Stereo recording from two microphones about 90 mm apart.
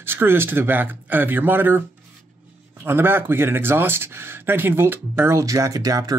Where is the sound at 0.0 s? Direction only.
25° right (ahead or behind).